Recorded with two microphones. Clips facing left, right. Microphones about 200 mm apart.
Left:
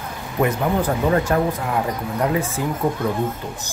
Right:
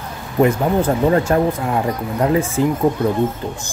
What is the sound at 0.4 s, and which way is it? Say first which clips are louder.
Speech: right 5 dB; 30° right (ahead or behind).